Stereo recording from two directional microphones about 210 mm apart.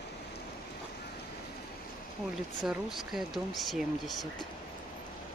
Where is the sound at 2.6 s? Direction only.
Centre (ahead or behind).